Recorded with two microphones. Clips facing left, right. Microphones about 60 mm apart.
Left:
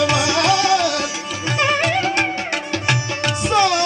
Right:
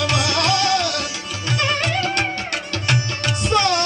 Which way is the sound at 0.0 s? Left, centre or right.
Centre.